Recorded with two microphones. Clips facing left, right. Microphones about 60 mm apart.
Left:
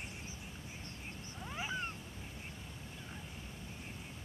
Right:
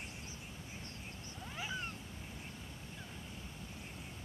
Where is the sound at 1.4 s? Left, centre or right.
Left.